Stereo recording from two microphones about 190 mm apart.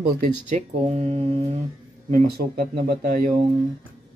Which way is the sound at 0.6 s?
35° right (ahead or behind).